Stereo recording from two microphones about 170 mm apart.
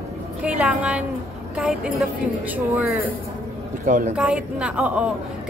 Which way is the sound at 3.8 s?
50° right (ahead or behind).